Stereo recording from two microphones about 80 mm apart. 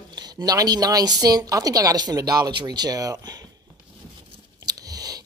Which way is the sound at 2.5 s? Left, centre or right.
Right.